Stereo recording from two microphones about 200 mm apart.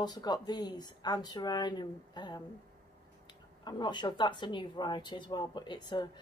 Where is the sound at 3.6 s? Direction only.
20° left (ahead or behind).